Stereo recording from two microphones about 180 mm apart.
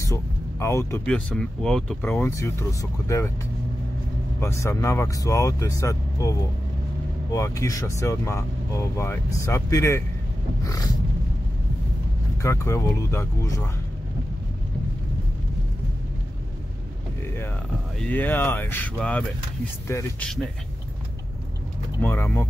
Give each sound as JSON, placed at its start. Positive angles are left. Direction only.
{"t": 0.0, "sound": "speech", "side_deg": 15}
{"t": 2.0, "sound": "speech", "side_deg": 15}
{"t": 4.4, "sound": "speech", "side_deg": 15}
{"t": 7.3, "sound": "speech", "side_deg": 15}
{"t": 12.4, "sound": "speech", "side_deg": 15}
{"t": 17.9, "sound": "speech", "side_deg": 10}
{"t": 22.0, "sound": "speech", "side_deg": 10}